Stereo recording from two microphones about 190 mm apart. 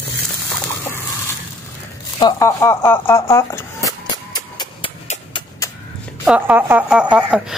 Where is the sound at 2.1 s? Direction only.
20° left (ahead or behind).